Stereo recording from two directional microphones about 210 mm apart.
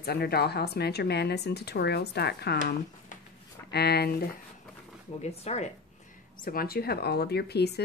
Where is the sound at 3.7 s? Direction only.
50° left (ahead or behind).